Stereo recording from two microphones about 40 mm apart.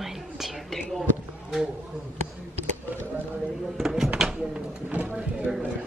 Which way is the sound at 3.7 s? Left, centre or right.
Centre.